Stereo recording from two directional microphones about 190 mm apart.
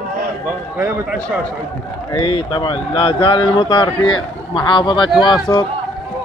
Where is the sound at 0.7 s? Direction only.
10° right (ahead or behind).